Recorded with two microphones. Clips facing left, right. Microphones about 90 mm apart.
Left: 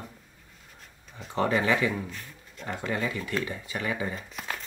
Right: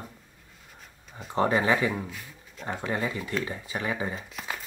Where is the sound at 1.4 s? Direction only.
25° right (ahead or behind).